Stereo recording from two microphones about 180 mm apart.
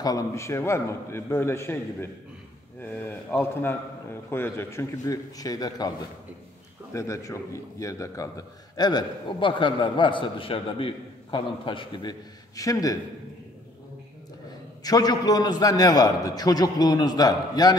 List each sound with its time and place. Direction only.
0.0 s a man's voice: 20° left (ahead or behind)
6.9 s a man's voice: 15° left (ahead or behind)
14.8 s a man's voice: 20° left (ahead or behind)